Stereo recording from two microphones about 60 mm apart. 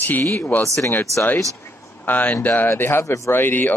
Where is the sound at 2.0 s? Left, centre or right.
Left.